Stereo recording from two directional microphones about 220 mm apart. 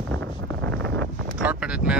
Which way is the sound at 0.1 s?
55° right (ahead or behind).